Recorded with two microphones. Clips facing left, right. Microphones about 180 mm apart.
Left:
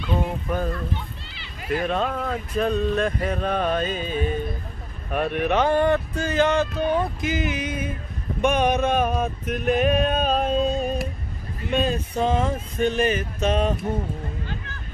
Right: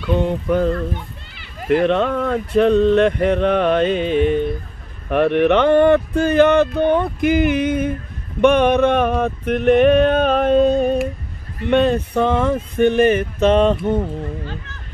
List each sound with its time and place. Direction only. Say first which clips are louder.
0.1 s speech: right 8 dB; 75° right (ahead or behind)
1.3 s a sound: right 9 dB; 50° right (ahead or behind)
1.8 s speech: right 6 dB; 75° right (ahead or behind)